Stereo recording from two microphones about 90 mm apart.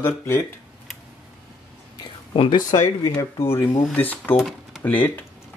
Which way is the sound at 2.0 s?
60° left (ahead or behind).